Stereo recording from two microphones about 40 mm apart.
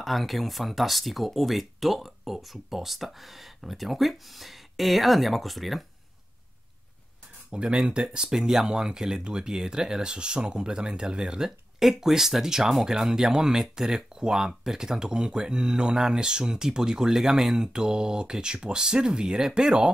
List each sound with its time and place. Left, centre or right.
0.0 s speech: centre
7.5 s speech: right; by 17.6 s centre
17.6 s speech: centre